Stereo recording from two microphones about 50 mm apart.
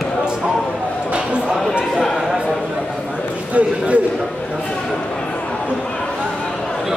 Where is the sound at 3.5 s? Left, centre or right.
Right.